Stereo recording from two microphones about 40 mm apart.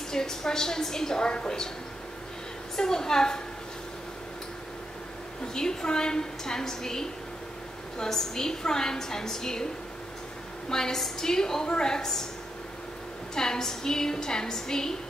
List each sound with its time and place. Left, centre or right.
0.1 s a woman's voice: centre
2.7 s a woman's voice: centre
5.5 s a woman's voice: centre
10.7 s a woman's voice: centre
13.3 s a woman's voice: centre